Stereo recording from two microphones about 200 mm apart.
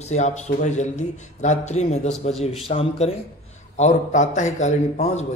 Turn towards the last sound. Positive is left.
turn(degrees=35)  # may be behind; listen again after turning